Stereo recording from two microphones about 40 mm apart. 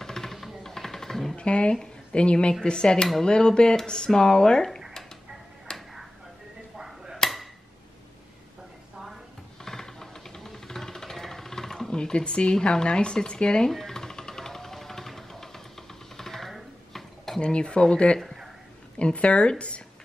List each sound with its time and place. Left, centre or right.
0.0 s music: centre
0.3 s music: centre
0.7 s a sound: centre
1.3 s speech: left
5.7 s a sound: centre
7.2 s a sound: centre
9.7 s music: centre
11.9 s speech: left
13.7 s music: centre
16.2 s typing: centre
17.4 s speech: left